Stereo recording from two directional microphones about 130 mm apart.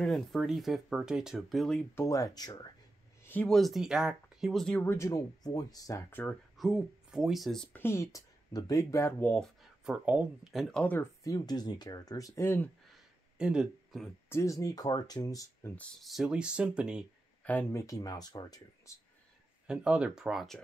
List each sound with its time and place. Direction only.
0.0 s speech: centre (ahead or behind)
2.0 s speech: 25° left (ahead or behind)
3.4 s speech: centre (ahead or behind)
4.8 s speech: 20° left (ahead or behind)
6.2 s speech: centre (ahead or behind)
7.7 s speech: 20° left (ahead or behind)
9.6 s speech: 5° right (ahead or behind)
10.8 s speech: 15° left (ahead or behind)
11.2 s speech: 30° left (ahead or behind)
12.9 s a sound: 5° right (ahead or behind)
14.3 s speech: 25° left (ahead or behind)
15.6 s speech: 10° left (ahead or behind); by 17.0 s 5° right (ahead or behind)
17.4 s speech: 10° left (ahead or behind); by 18.9 s 30° left (ahead or behind)
19.7 s speech: 10° right (ahead or behind)